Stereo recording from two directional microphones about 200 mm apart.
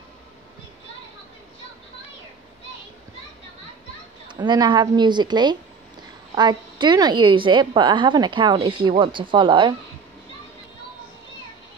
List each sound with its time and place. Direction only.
4.3 s a woman's voice: 20° right (ahead or behind)